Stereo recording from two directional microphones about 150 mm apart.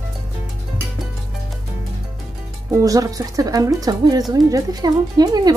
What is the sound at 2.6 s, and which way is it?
Speech, 20° right (ahead or behind).